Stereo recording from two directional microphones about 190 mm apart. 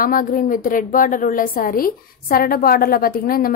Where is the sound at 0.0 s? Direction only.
45° left (ahead or behind).